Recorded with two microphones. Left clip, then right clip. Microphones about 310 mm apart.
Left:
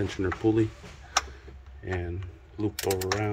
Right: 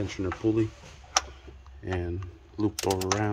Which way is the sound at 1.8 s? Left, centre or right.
Centre.